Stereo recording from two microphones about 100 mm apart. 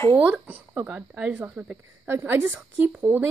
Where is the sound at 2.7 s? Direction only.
15° right (ahead or behind).